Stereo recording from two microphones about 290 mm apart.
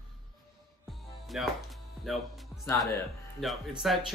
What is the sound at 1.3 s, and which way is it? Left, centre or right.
Speech, centre.